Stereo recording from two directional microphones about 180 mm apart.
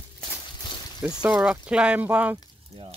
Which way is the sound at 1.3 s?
5° right (ahead or behind).